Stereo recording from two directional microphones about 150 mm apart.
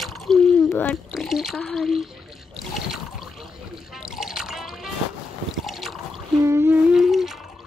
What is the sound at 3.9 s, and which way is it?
Music, 5° right (ahead or behind).